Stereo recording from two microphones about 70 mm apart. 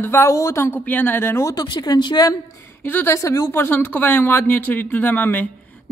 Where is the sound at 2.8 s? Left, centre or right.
Left.